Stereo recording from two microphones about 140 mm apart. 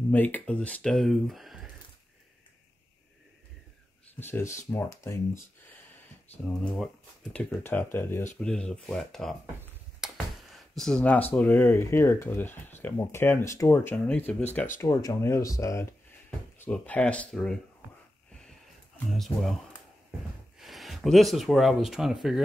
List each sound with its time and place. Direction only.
0.1 s speech: 10° left (ahead or behind)
4.1 s speech: 15° left (ahead or behind)
6.4 s speech: 5° left (ahead or behind)
8.4 s speech: 5° left (ahead or behind)
14.8 s speech: 20° left (ahead or behind); by 17.6 s 5° left (ahead or behind)
19.1 s speech: centre (ahead or behind)